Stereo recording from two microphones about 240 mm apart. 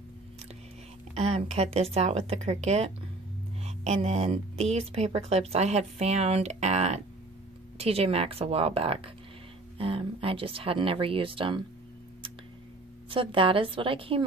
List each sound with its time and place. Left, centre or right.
1.1 s speech: right
13.1 s speech: right